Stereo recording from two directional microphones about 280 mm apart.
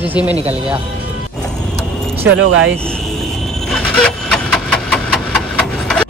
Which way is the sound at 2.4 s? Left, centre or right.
Right.